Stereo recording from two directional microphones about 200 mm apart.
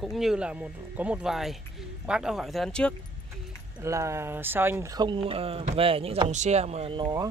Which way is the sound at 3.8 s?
15° right (ahead or behind).